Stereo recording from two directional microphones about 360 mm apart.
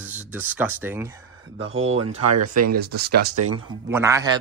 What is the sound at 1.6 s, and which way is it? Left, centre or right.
Speech, right.